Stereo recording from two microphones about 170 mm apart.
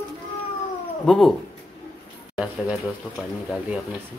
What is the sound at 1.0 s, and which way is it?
Speech, centre (ahead or behind).